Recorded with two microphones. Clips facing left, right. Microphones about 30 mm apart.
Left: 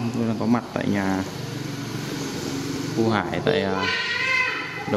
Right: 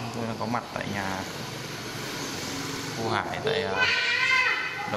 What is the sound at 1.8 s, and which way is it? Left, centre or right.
Vehicle, right.